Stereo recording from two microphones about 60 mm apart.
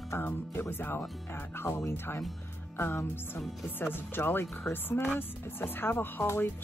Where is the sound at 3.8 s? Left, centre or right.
Left.